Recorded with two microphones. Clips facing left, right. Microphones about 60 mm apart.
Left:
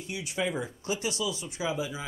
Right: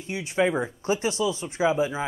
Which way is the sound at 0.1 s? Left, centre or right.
Right.